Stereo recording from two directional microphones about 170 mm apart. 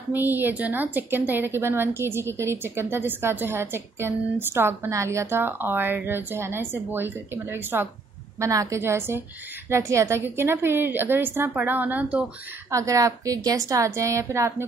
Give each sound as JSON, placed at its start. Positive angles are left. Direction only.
{"t": 0.1, "sound": "a woman's voice", "side_deg": -10}
{"t": 12.7, "sound": "a woman's voice", "side_deg": -20}